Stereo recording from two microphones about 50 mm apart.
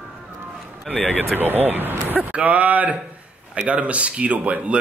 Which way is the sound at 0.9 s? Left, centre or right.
Centre.